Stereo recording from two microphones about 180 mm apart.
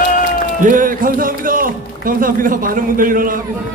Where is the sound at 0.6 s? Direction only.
45° right (ahead or behind).